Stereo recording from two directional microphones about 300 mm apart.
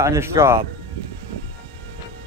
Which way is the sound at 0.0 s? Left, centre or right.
Centre.